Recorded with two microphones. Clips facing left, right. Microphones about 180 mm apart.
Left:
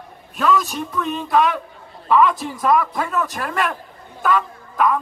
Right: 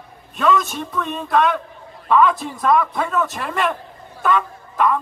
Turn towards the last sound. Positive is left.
turn(degrees=5)  # may be behind; listen again after turning